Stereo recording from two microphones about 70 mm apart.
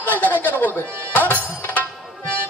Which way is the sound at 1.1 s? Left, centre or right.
Left.